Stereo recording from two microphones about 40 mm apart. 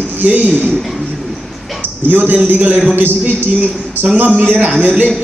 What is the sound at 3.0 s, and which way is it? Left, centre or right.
Speech, right.